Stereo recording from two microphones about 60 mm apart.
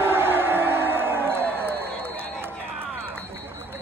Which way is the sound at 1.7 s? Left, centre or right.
Right.